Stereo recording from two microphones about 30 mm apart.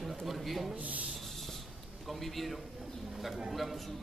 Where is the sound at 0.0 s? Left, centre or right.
Centre.